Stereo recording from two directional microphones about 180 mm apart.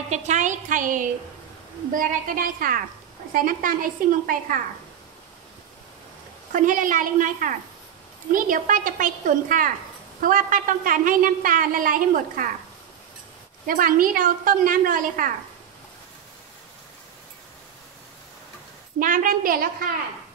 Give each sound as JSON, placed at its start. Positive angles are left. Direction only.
{"t": 0.1, "sound": "a woman's voice", "side_deg": -40}
{"t": 6.5, "sound": "a woman's voice", "side_deg": -45}
{"t": 13.7, "sound": "a woman's voice", "side_deg": -50}
{"t": 18.9, "sound": "a woman's voice", "side_deg": -50}